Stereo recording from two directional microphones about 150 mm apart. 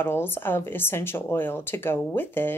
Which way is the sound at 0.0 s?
15° left (ahead or behind).